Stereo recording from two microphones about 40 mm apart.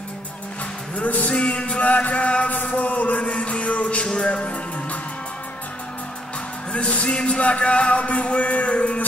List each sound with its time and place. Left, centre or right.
0.9 s speech: left
1.3 s music: left
1.9 s chant: left
3.3 s music: left
6.7 s speech: left